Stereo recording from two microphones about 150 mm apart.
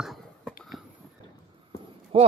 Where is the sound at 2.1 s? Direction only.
40° right (ahead or behind).